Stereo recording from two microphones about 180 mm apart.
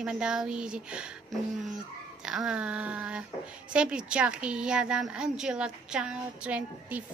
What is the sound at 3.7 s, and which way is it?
A woman's voice, 5° right (ahead or behind).